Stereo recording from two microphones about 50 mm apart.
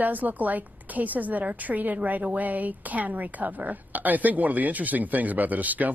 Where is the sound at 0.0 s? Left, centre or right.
Right.